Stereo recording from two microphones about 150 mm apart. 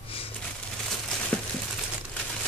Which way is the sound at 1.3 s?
5° left (ahead or behind).